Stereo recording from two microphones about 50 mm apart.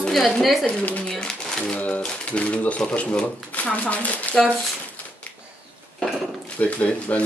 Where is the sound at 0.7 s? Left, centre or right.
Left.